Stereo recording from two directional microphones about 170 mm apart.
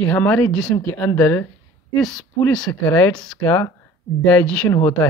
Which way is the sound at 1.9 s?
Centre (ahead or behind).